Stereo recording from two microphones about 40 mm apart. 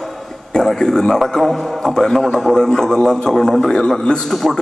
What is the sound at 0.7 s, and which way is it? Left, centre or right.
A man's voice, centre.